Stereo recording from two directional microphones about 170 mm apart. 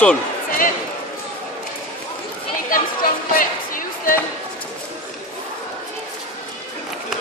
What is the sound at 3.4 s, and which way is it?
Music, 55° left (ahead or behind).